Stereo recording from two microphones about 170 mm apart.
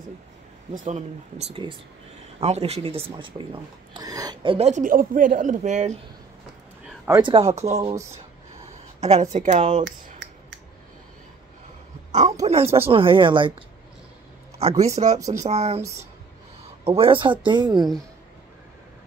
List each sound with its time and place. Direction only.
0.8 s speech: 40° right (ahead or behind)
7.1 s speech: 25° right (ahead or behind)
9.0 s speech: 40° right (ahead or behind)
12.1 s a sound: 45° right (ahead or behind)
12.7 s speech: 35° right (ahead or behind)
14.6 s speech: 35° right (ahead or behind)
15.1 s speech: 20° right (ahead or behind)
15.4 s speech: 40° right (ahead or behind)
16.8 s speech: 35° right (ahead or behind)